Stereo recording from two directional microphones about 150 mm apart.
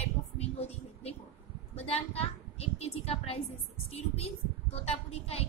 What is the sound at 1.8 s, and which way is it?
A woman's voice, 45° left (ahead or behind).